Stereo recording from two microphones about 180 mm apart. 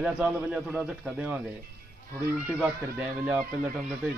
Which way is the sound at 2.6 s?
5° right (ahead or behind).